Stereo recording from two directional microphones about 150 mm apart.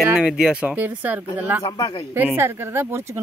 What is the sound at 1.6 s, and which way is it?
Speech, 25° left (ahead or behind).